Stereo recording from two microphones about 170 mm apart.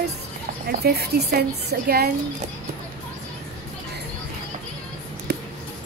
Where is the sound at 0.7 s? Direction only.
65° right (ahead or behind).